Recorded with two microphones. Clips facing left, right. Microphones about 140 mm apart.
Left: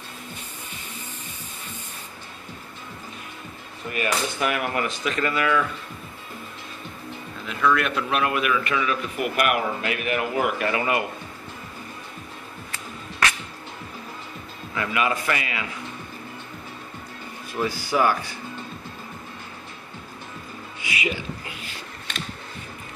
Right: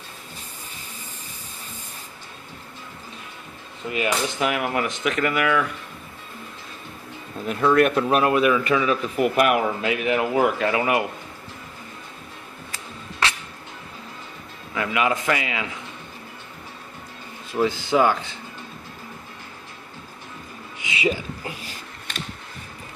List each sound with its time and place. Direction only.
3.9 s speech: 20° right (ahead or behind)
7.7 s a man's voice: 45° right (ahead or behind); by 11.1 s 15° right (ahead or behind)
14.7 s speech: 15° right (ahead or behind)
17.5 s speech: 20° right (ahead or behind)
20.8 s music: 20° right (ahead or behind)
21.1 s speech: 40° right (ahead or behind)